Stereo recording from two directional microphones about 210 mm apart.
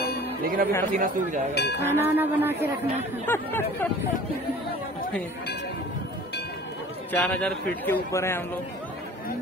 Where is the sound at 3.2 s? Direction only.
10° left (ahead or behind).